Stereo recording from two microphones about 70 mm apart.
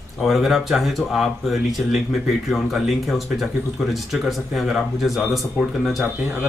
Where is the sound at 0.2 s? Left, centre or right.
Centre.